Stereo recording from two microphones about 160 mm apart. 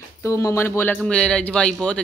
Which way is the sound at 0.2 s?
20° left (ahead or behind).